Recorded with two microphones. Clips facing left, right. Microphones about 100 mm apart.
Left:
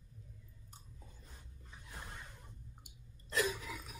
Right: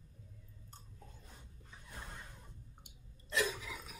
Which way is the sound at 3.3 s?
40° left (ahead or behind).